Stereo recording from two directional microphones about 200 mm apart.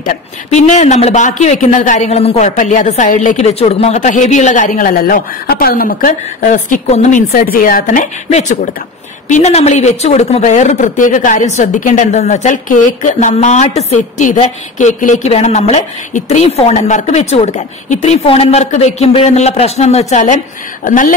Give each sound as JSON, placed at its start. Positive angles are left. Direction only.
{"t": 0.0, "sound": "speech", "side_deg": 40}